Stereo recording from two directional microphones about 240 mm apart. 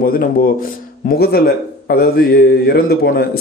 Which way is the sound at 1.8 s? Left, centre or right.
Left.